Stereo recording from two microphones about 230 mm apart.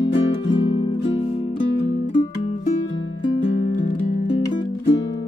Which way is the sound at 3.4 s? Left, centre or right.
Left.